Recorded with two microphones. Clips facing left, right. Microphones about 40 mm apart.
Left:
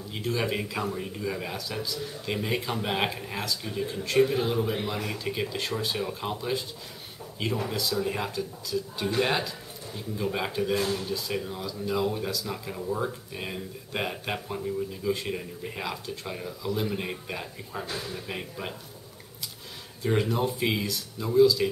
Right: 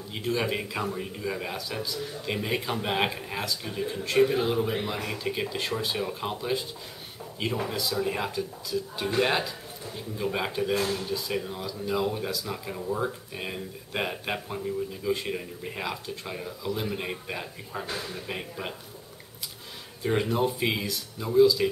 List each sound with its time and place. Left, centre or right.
0.1 s speech: centre
20.0 s speech: centre